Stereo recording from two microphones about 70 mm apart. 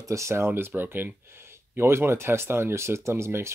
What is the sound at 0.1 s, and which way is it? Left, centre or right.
Speech, right.